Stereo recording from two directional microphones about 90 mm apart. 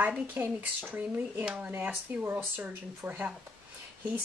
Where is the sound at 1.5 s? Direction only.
15° right (ahead or behind).